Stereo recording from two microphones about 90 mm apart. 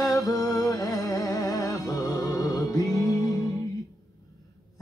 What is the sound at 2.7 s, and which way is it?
Music, 40° left (ahead or behind).